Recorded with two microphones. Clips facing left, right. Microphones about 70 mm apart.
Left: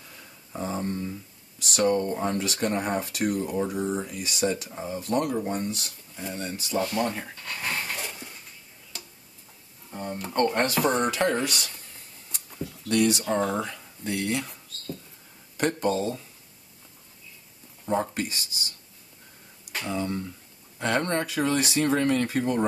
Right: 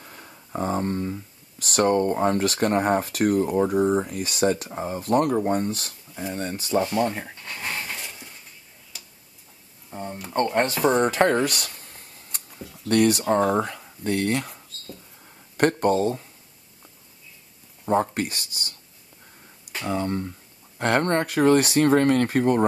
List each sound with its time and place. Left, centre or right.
0.0 s a sound: right
0.7 s speech: right
6.8 s speech: right
7.9 s dog: centre
9.8 s speech: centre
11.0 s a sound: right
12.8 s speech: right
13.3 s speech: right
15.5 s speech: right
18.1 s speech: right
19.9 s speech: right